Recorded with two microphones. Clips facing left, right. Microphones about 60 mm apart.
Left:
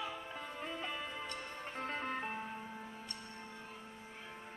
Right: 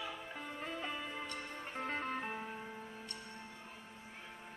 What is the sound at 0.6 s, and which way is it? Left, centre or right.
Music, centre.